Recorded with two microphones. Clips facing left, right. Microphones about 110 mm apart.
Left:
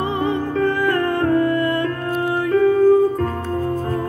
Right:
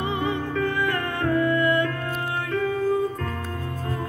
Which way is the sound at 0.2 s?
35° left (ahead or behind).